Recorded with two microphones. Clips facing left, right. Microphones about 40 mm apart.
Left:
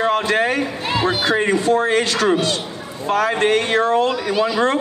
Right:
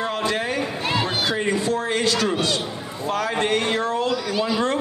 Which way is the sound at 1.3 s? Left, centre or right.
Left.